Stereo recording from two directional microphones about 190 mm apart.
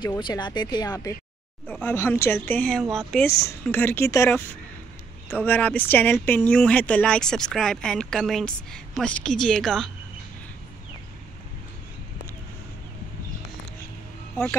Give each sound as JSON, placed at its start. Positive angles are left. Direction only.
{"t": 0.0, "sound": "speech", "side_deg": 20}
{"t": 1.7, "sound": "speech", "side_deg": 10}
{"t": 3.3, "sound": "speech", "side_deg": 15}
{"t": 14.3, "sound": "speech", "side_deg": 10}